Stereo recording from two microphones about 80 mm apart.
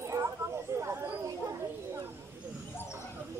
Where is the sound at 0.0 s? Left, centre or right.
Right.